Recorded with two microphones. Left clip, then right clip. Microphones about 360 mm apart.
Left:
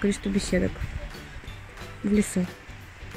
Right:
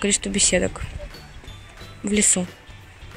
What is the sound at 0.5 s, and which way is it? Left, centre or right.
Speech, right.